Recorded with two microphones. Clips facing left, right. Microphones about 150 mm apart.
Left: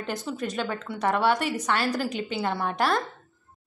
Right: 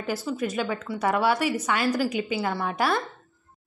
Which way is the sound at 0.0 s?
5° right (ahead or behind).